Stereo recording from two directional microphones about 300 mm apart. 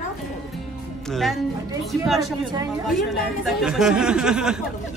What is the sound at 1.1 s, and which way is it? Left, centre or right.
Speech, centre.